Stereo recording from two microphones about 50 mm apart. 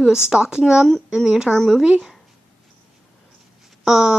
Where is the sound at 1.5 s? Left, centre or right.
Centre.